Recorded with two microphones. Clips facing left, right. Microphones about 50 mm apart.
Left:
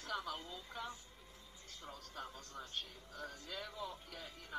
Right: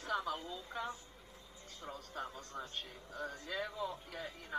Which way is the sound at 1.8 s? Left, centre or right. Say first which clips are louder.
Right 5 dB; centre.